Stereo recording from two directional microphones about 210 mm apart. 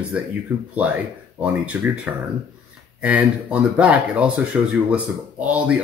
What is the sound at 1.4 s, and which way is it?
Speech, 5° right (ahead or behind).